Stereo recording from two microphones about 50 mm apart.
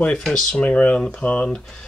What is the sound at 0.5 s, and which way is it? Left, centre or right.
Speech, left.